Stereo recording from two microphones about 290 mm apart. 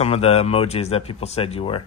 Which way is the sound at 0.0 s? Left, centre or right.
Left.